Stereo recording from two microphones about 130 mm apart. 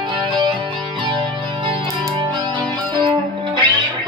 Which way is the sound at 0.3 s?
40° right (ahead or behind).